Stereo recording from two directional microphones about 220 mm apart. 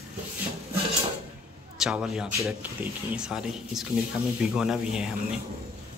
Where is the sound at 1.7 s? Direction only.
Centre (ahead or behind).